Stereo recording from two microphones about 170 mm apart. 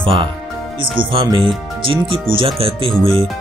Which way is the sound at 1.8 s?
30° right (ahead or behind).